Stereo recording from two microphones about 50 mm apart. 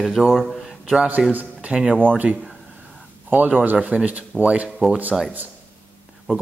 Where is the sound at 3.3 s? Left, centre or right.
Right.